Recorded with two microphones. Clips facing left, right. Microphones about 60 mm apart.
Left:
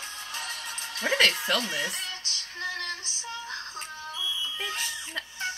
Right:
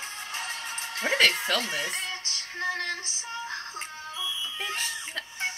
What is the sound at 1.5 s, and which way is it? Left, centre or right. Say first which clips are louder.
Music: even; right.